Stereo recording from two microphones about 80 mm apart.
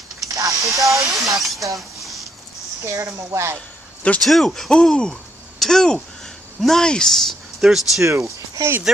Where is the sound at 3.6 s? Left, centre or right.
Centre.